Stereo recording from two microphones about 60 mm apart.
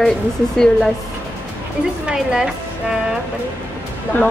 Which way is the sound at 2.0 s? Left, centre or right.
Centre.